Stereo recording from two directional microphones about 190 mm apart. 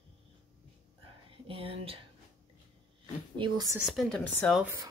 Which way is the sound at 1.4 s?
30° right (ahead or behind).